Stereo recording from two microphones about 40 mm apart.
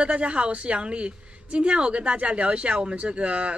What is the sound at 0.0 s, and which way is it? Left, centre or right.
A woman's voice, right.